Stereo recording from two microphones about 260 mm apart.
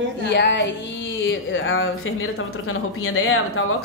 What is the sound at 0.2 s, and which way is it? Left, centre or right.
A woman's voice, left.